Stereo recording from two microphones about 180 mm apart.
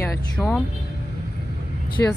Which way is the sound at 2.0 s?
10° left (ahead or behind).